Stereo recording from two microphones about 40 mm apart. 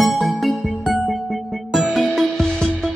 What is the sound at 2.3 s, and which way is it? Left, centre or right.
Music, centre.